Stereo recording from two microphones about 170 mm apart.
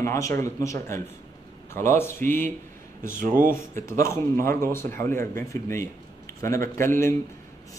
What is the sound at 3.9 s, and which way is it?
A man's voice, 15° left (ahead or behind).